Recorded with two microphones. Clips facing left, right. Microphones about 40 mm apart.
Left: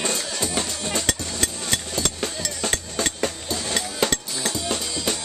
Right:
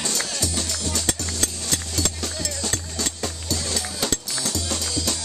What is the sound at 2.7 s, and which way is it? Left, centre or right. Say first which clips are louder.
Music: left 3 dB; left.